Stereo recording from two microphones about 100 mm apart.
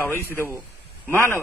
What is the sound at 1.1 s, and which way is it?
Speech, 25° left (ahead or behind).